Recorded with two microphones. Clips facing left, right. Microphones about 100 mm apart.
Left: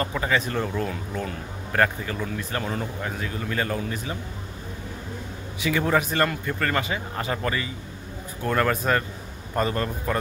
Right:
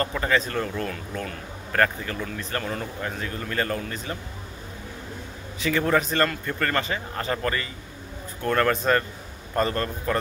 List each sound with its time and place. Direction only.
0.1 s speech: 10° left (ahead or behind)
5.6 s speech: 10° left (ahead or behind)